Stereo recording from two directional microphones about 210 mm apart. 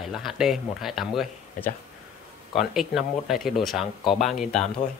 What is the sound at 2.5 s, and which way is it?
Speech, centre (ahead or behind).